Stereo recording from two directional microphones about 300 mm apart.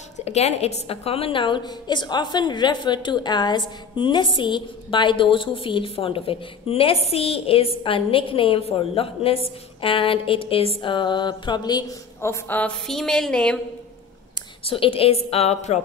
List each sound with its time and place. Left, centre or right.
0.2 s a woman's voice: left; by 13.6 s centre
14.6 s a woman's voice: centre